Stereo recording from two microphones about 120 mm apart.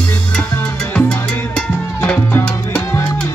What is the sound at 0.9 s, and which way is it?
Music, 10° left (ahead or behind).